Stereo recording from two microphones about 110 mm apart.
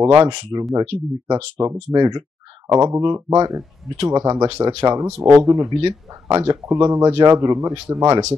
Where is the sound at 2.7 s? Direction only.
25° right (ahead or behind).